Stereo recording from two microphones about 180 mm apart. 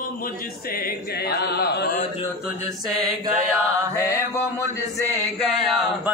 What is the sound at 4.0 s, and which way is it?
Mantra, 15° left (ahead or behind).